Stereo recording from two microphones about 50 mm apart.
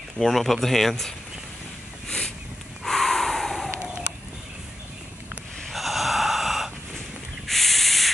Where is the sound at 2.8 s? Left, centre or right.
Centre.